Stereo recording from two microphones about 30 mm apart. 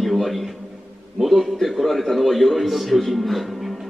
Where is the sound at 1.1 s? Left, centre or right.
Centre.